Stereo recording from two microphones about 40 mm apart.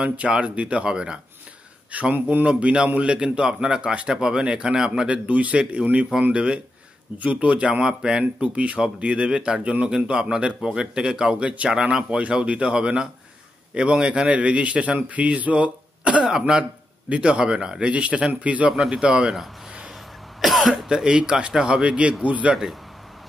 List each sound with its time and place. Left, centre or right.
0.0 s speech: right
1.9 s speech: right
2.4 s speech: right
5.0 s a man's voice: right
5.6 s speech: right
7.2 s a man's voice: right
7.8 s speech: centre
8.4 s a man's voice: right
11.7 s a man's voice: centre
16.3 s speech: centre
17.9 s a man's voice: right
18.9 s speech: right
20.3 s cough: centre
20.7 s a man's voice: centre; by 22.5 s right